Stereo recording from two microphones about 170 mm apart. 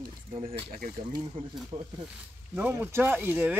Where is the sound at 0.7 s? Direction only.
55° right (ahead or behind).